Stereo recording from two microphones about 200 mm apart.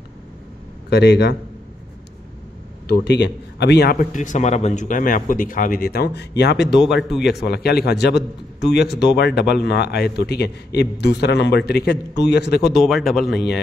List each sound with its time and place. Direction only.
0.8 s a man's voice: 55° left (ahead or behind)
2.9 s a man's voice: 55° left (ahead or behind)
6.8 s speech: centre (ahead or behind)
7.4 s a man's voice: 55° left (ahead or behind)
12.7 s speech: centre (ahead or behind)